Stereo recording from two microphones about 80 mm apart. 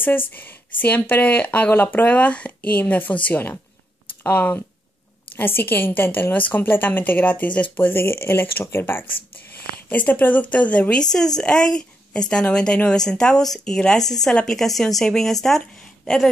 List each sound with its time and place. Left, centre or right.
0.3 s a woman's voice: left; by 15.6 s centre